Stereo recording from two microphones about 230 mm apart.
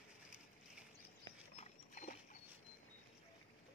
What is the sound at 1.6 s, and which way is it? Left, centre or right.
Dog, left.